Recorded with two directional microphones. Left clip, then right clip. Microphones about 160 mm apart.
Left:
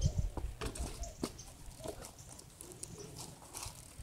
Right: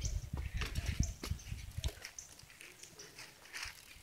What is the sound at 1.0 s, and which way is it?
Horse, 40° right (ahead or behind).